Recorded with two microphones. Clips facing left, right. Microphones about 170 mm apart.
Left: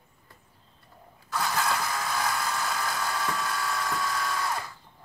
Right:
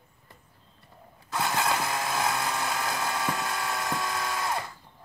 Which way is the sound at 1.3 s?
25° right (ahead or behind).